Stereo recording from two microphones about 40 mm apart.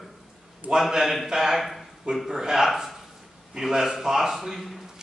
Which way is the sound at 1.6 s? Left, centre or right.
Centre.